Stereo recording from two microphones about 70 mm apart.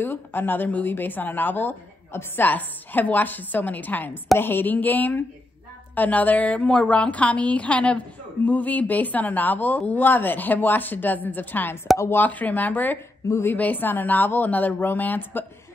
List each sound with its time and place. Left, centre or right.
0.0 s a woman's voice: left